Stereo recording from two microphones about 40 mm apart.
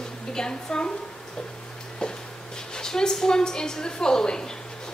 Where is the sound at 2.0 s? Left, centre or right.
Centre.